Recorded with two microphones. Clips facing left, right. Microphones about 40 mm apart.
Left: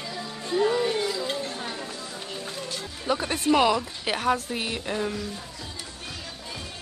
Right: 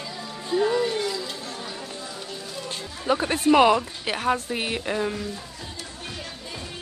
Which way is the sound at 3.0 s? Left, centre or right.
Centre.